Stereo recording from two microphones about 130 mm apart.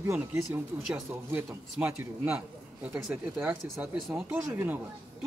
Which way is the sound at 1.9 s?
15° right (ahead or behind).